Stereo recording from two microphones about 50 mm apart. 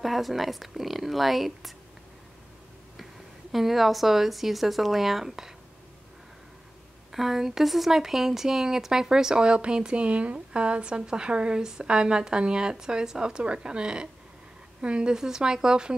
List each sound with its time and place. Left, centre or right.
0.0 s speech: centre
3.5 s speech: centre
7.1 s speech: centre